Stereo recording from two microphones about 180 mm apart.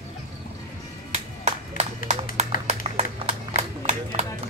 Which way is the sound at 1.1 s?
40° right (ahead or behind).